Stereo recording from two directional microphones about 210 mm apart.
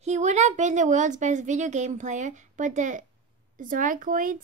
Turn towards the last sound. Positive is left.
turn(degrees=-40)  # may be behind; listen again after turning